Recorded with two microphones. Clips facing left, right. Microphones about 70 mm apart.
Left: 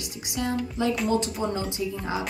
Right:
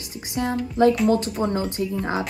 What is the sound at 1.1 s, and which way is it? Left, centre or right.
Speech, right.